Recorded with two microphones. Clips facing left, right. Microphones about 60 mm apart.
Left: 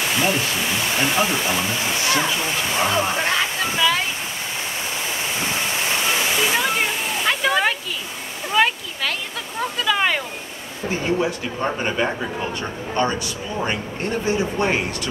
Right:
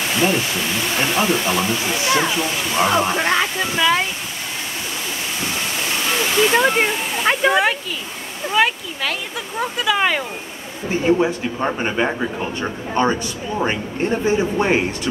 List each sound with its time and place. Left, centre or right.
0.0 s speech: centre
2.1 s a man's voice: centre
5.7 s waterfall: centre
6.5 s a man's voice: centre
11.1 s a man's voice: centre